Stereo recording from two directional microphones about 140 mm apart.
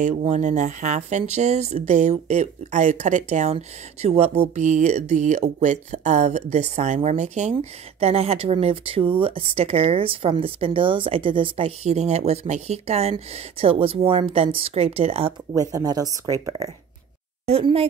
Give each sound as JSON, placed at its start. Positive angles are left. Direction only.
{"t": 0.0, "sound": "speech", "side_deg": -50}
{"t": 8.0, "sound": "speech", "side_deg": -45}
{"t": 15.5, "sound": "speech", "side_deg": -25}
{"t": 17.5, "sound": "speech", "side_deg": -45}